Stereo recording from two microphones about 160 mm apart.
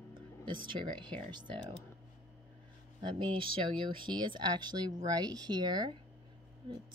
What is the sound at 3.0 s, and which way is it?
Speech, 30° right (ahead or behind).